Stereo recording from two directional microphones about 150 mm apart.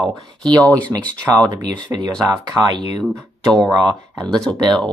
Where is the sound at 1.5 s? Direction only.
25° right (ahead or behind).